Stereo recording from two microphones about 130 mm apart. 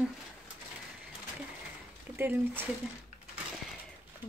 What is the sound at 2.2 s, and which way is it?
Speech, 15° right (ahead or behind).